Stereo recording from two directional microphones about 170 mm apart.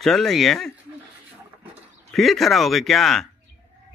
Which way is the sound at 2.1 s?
Centre (ahead or behind).